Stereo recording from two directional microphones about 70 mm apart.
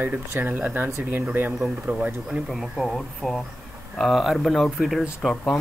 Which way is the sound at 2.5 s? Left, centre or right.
Centre.